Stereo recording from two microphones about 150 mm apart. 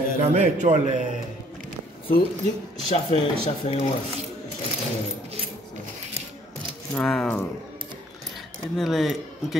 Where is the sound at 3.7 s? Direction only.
40° left (ahead or behind).